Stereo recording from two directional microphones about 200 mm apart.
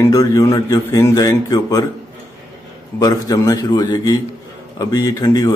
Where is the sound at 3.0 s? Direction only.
20° left (ahead or behind).